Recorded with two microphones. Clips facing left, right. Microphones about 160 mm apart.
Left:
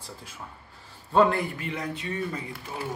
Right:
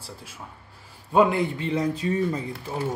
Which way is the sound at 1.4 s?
30° right (ahead or behind).